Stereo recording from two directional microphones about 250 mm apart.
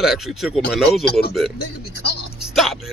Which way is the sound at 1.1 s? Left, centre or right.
Left.